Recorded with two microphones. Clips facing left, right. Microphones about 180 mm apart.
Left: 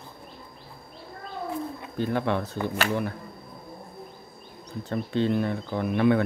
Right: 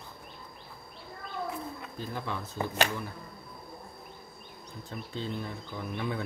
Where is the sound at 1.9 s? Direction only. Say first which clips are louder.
Left 12 dB; 70° left (ahead or behind).